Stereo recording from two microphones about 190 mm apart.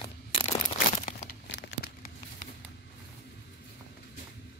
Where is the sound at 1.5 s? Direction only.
65° left (ahead or behind).